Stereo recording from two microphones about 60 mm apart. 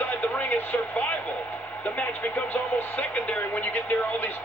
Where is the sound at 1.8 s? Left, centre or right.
Left.